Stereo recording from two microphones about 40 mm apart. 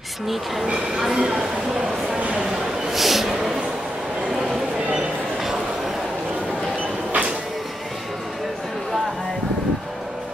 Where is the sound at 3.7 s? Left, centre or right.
Centre.